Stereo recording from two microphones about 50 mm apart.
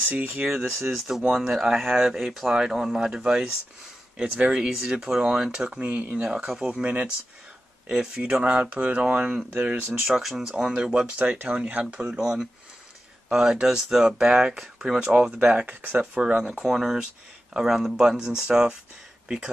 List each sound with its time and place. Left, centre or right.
0.1 s speech: right
0.8 s speech: centre
5.8 s speech: right
6.2 s speech: centre
6.7 s speech: right
7.9 s speech: centre
10.0 s speech: centre; by 12.0 s right
12.2 s speech: centre
15.5 s speech: right
16.2 s speech: centre